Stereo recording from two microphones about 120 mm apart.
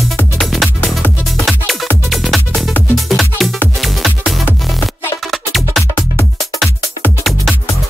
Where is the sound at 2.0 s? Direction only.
Centre (ahead or behind).